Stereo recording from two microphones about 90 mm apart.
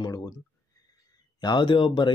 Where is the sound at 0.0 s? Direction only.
40° left (ahead or behind).